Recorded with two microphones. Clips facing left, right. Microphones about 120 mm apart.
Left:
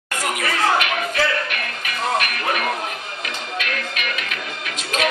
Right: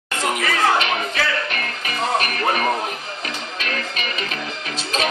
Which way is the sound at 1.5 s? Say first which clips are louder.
Right 1 dB; 35° right (ahead or behind).